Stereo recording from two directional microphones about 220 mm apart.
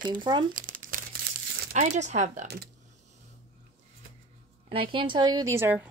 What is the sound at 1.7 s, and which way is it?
Speech, 30° right (ahead or behind).